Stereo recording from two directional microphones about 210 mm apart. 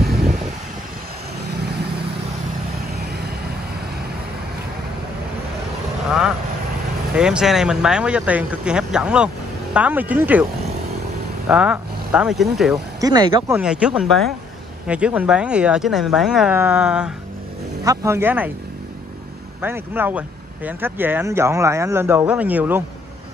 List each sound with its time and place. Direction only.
2.9 s vehicle: 50° right (ahead or behind)
7.2 s speech: 5° right (ahead or behind)
11.4 s speech: 5° right (ahead or behind)
13.0 s speech: 20° right (ahead or behind)
13.6 s speech: 5° right (ahead or behind)
19.6 s speech: 10° right (ahead or behind)